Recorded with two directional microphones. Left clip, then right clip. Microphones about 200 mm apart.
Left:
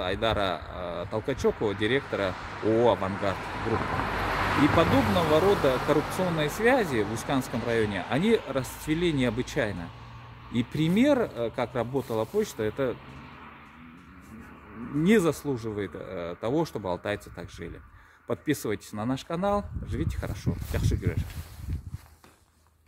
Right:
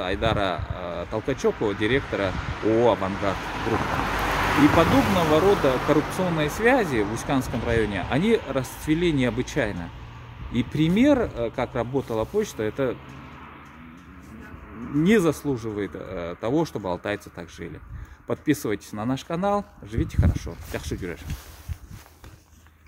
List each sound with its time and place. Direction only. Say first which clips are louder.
0.0 s speech: right 3 dB; 5° left (ahead or behind)
2.3 s speech: right 3 dB; 40° right (ahead or behind)
2.8 s speech: right 2 dB; 5° left (ahead or behind)
3.4 s speech: right 4 dB; 50° right (ahead or behind)
5.3 s speech: right 3 dB; 5° left (ahead or behind)
15.0 s speech: right 2 dB; 5° left (ahead or behind)